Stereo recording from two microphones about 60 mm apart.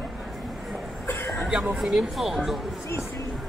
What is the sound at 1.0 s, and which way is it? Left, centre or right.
Chuckle, left.